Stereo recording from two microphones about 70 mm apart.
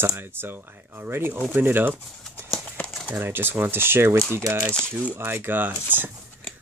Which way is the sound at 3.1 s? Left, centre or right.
Right.